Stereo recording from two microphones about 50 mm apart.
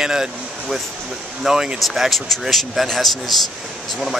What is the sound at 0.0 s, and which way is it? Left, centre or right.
Speech, centre.